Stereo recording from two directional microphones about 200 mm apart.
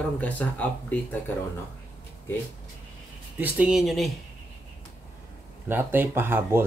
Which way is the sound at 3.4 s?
5° right (ahead or behind).